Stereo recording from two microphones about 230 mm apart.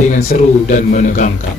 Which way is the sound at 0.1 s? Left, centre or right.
Left.